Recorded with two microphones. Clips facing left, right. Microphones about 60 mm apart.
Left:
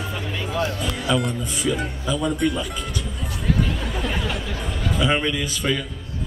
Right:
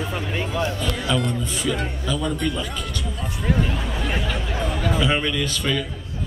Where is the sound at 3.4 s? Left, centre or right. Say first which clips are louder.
Even; centre.